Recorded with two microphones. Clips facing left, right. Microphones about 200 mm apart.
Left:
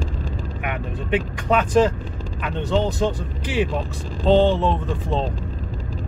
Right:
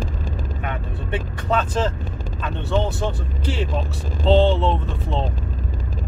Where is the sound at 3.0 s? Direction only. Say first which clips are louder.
Left 3 dB; 15° left (ahead or behind).